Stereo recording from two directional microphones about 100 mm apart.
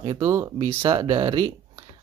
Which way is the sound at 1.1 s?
50° right (ahead or behind).